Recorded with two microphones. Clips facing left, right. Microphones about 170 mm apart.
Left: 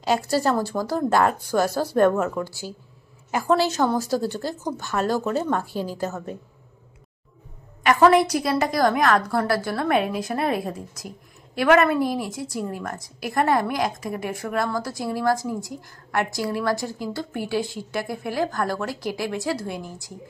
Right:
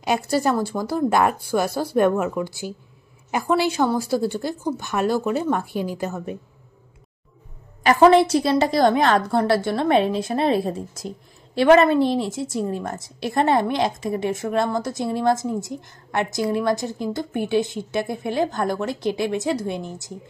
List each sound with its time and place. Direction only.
0.0 s a woman's voice: 15° right (ahead or behind)
7.8 s a woman's voice: 30° right (ahead or behind)